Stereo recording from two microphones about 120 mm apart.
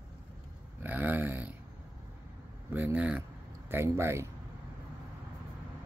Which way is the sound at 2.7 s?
15° right (ahead or behind).